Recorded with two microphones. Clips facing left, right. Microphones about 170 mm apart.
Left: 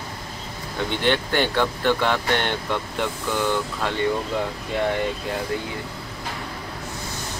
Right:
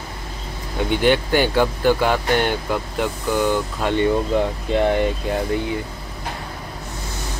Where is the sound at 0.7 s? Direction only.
10° right (ahead or behind).